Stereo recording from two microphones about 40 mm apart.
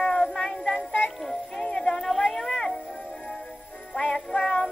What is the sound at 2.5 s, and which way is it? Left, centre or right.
Music, centre.